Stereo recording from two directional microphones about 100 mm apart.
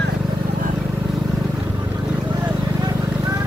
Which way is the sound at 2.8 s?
35° right (ahead or behind).